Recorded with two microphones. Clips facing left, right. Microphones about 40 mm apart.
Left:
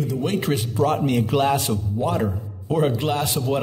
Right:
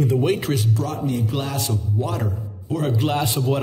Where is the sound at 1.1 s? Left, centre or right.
Left.